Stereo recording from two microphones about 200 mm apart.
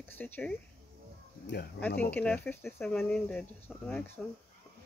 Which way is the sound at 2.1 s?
5° left (ahead or behind).